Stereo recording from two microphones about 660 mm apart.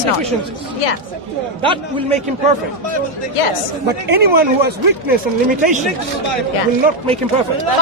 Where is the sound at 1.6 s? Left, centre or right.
Centre.